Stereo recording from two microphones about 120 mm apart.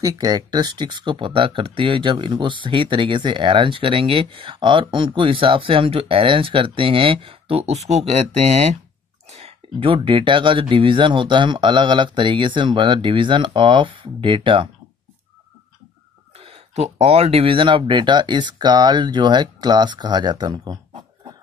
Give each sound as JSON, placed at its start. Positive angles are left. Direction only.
{"t": 0.0, "sound": "speech", "side_deg": -30}
{"t": 9.3, "sound": "speech", "side_deg": -50}
{"t": 16.3, "sound": "speech", "side_deg": -55}